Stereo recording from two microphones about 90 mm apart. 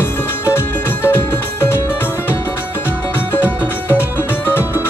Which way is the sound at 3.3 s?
25° left (ahead or behind).